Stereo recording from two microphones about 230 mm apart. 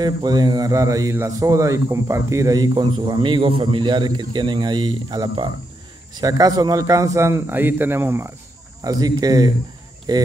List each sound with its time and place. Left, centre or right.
0.0 s speech: centre